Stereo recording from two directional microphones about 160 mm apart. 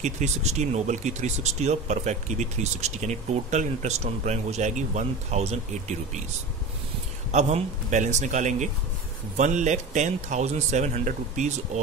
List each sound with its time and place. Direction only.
0.0 s speech: 45° right (ahead or behind)
7.2 s speech: 45° right (ahead or behind)